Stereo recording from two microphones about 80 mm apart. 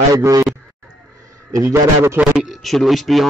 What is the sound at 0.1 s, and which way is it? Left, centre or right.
Speech, right.